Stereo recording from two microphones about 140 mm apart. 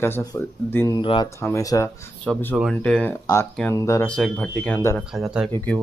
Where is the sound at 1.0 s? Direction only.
35° left (ahead or behind).